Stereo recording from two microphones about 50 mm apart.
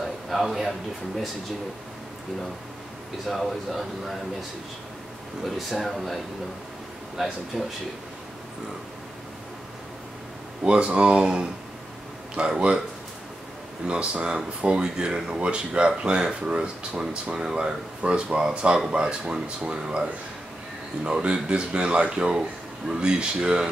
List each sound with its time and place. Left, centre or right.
0.0 s speech: centre
3.3 s speech: centre
7.5 s speech: centre
10.6 s speech: right
13.8 s speech: right